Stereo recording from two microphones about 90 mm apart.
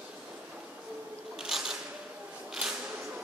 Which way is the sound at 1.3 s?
5° right (ahead or behind).